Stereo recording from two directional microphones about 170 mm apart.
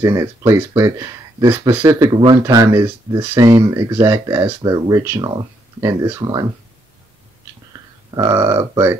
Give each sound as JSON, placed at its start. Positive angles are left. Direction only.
{"t": 0.0, "sound": "speech", "side_deg": -20}
{"t": 1.9, "sound": "speech", "side_deg": -25}
{"t": 8.1, "sound": "speech", "side_deg": -20}